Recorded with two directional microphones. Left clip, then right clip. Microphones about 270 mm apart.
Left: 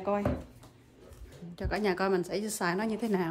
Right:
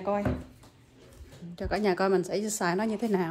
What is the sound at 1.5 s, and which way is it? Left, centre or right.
A woman's voice, centre.